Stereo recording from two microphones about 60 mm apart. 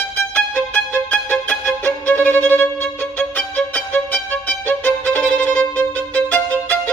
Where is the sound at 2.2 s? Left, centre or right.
Left.